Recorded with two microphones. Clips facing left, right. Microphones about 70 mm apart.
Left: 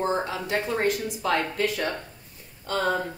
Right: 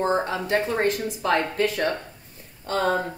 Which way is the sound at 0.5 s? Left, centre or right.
Right.